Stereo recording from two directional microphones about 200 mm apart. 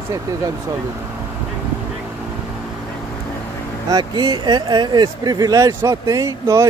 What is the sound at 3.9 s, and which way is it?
Speech, 20° right (ahead or behind).